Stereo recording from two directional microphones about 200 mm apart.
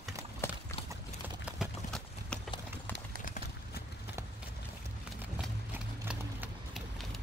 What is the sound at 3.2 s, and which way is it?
Clip-clop, 45° left (ahead or behind).